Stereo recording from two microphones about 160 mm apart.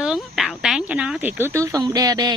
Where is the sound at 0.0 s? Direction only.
Centre (ahead or behind).